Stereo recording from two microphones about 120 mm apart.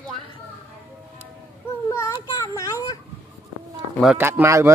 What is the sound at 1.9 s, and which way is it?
Child singing, 25° left (ahead or behind).